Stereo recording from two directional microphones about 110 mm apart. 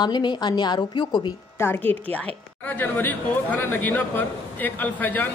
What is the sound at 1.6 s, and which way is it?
A woman's voice, 20° left (ahead or behind).